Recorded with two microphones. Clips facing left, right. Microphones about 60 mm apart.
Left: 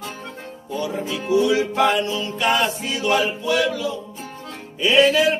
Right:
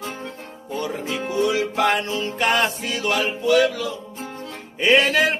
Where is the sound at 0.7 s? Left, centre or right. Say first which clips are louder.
Left 1 dB; right.